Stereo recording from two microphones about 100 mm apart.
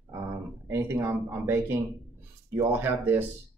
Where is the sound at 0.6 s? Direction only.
25° right (ahead or behind).